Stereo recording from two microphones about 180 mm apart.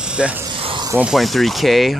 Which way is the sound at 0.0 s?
5° right (ahead or behind).